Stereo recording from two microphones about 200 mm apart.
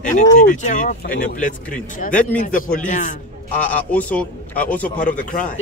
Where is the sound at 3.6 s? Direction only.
5° left (ahead or behind).